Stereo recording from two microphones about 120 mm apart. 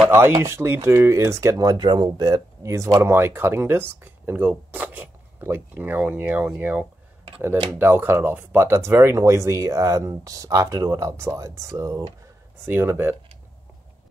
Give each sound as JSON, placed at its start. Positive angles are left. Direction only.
{"t": 0.1, "sound": "speech", "side_deg": -20}
{"t": 7.8, "sound": "speech", "side_deg": -20}